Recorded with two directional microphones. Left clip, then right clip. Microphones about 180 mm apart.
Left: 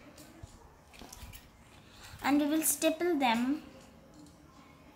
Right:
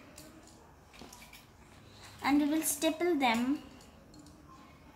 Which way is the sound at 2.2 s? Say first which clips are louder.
Even; 20° left (ahead or behind).